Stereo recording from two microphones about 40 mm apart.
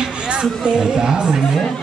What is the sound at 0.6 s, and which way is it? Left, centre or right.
Speech, right.